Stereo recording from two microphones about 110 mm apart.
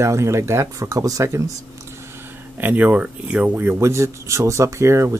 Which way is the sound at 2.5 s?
15° right (ahead or behind).